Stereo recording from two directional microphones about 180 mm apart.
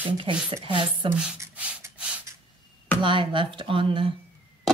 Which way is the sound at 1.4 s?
10° right (ahead or behind).